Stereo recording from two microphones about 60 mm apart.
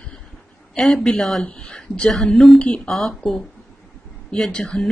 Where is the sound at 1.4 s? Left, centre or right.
Centre.